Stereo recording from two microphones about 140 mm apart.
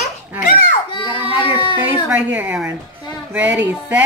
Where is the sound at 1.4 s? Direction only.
35° left (ahead or behind).